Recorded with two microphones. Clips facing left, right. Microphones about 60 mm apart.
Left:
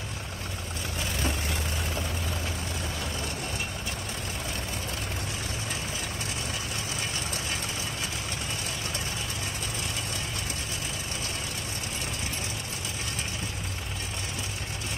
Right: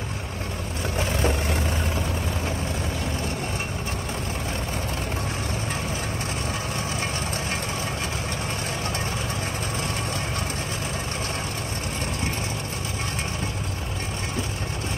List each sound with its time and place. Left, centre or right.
0.9 s vehicle: right